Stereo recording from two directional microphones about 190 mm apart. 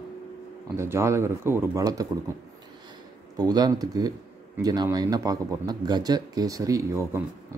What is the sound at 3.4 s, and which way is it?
Speech, 20° right (ahead or behind).